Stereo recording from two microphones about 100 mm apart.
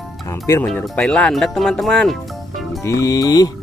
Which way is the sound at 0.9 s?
10° left (ahead or behind).